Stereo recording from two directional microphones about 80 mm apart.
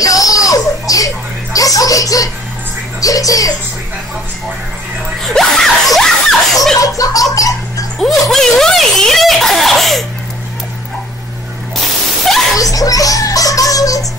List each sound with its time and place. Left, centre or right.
0.0 s a sound: left
3.0 s music: left
5.2 s screaming: centre
6.8 s chuckle: left
7.3 s a sound: left
8.0 s music: centre
12.5 s music: left